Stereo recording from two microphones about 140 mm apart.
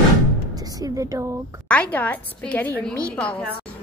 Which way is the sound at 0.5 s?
25° right (ahead or behind).